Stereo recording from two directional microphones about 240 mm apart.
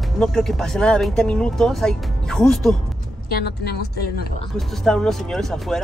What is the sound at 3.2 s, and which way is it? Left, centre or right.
A woman's voice, left.